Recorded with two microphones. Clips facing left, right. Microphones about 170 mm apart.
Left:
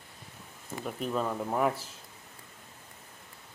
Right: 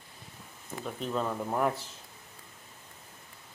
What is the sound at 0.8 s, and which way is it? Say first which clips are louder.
Speech: left 1 dB; 5° left (ahead or behind).